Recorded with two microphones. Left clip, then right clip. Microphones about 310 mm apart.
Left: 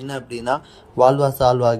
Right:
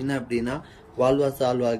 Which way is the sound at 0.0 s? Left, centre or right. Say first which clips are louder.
Left 1 dB; centre.